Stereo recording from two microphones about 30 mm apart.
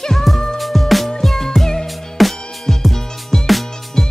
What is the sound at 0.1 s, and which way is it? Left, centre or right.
Music, centre.